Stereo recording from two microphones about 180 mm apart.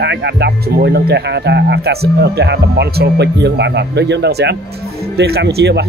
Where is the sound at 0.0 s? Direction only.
70° right (ahead or behind).